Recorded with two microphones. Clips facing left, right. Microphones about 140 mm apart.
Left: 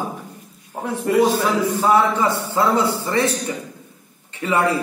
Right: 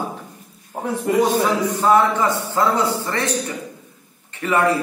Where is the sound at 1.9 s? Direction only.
20° left (ahead or behind).